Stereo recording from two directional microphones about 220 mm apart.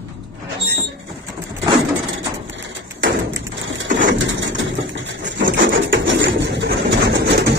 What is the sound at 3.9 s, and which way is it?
Bird, 55° right (ahead or behind).